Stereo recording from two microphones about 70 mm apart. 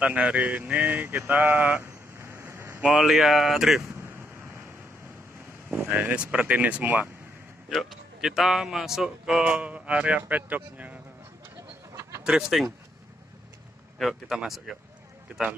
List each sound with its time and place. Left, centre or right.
0.0 s speech: centre
1.8 s a sound: right
2.8 s speech: centre
5.9 s speech: centre
7.7 s speech: centre; by 11.0 s right
11.9 s a sound: right
12.3 s speech: centre
13.9 s speech: centre